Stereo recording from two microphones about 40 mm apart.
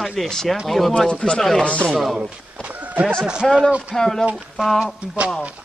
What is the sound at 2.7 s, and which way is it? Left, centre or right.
Horse, right.